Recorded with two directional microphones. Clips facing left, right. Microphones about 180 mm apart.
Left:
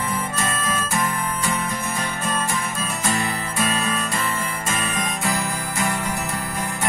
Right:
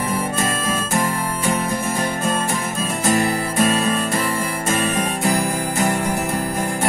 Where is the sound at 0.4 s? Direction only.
45° right (ahead or behind).